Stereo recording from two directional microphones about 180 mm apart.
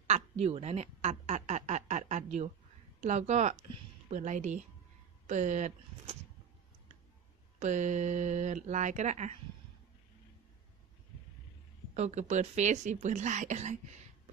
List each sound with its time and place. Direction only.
0.0 s a sound: 35° right (ahead or behind)
3.0 s speech: 40° right (ahead or behind)
7.5 s speech: 40° right (ahead or behind)
11.9 s speech: 40° right (ahead or behind)